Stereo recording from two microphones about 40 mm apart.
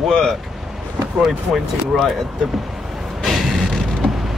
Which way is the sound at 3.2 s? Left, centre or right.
Centre.